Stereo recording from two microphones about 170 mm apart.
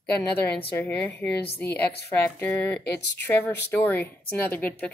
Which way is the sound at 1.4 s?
70° left (ahead or behind).